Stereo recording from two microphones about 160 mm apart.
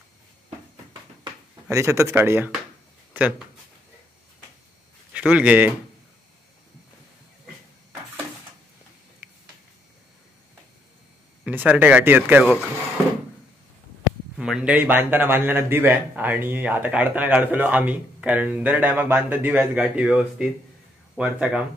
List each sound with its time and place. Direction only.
1.7 s a man's voice: 20° right (ahead or behind)
5.1 s speech: 10° right (ahead or behind)
9.2 s a sound: 10° right (ahead or behind)
11.4 s a man's voice: 10° right (ahead or behind)
14.3 s a man's voice: 5° right (ahead or behind)